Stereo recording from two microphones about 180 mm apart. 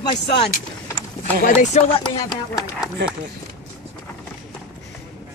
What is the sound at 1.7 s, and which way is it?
Speech, 40° left (ahead or behind).